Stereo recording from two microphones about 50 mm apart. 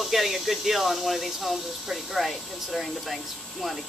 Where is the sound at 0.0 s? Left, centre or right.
Centre.